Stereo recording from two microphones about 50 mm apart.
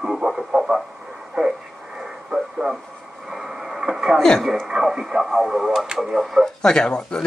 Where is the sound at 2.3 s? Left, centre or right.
Centre.